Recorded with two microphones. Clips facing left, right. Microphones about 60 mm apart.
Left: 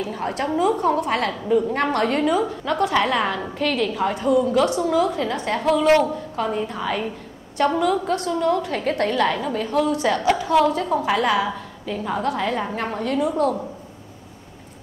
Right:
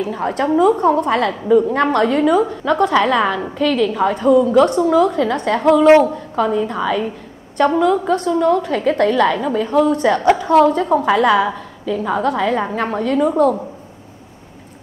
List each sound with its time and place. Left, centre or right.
0.0 s a woman's voice: right
6.3 s a woman's voice: right
7.8 s a woman's voice: right
13.3 s a woman's voice: right